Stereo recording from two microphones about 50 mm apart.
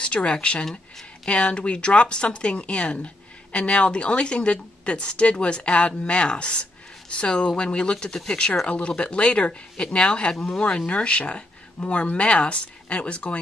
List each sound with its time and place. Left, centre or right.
0.0 s a woman's voice: centre